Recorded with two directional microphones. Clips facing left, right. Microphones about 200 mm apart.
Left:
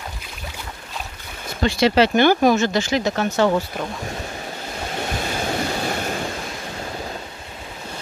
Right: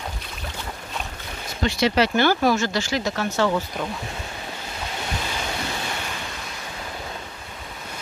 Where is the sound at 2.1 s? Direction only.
20° left (ahead or behind).